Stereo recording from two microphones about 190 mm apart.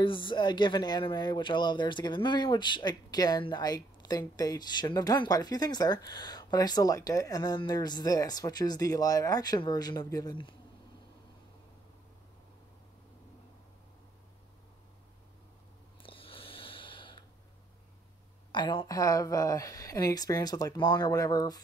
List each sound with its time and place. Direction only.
0.0 s speech: 25° left (ahead or behind)
16.0 s a sound: 30° left (ahead or behind)
18.5 s speech: 25° left (ahead or behind)